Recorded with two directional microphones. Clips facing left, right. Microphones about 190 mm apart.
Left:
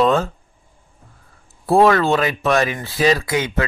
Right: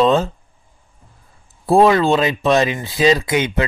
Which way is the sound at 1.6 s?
15° right (ahead or behind).